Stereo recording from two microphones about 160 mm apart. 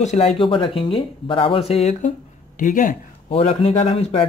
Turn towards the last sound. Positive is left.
turn(degrees=40)  # may be behind; listen again after turning